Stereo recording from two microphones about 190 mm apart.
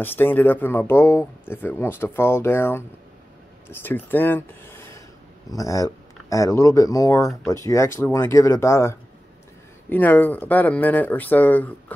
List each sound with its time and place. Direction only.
0.0 s speech: 10° left (ahead or behind)